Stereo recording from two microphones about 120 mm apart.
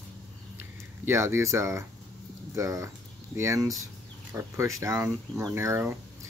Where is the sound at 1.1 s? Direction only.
25° right (ahead or behind).